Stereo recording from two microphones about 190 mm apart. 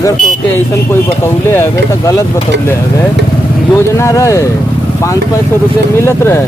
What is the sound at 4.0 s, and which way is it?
Speech, 15° left (ahead or behind).